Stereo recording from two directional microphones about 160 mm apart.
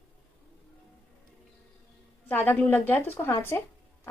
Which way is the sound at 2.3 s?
10° left (ahead or behind).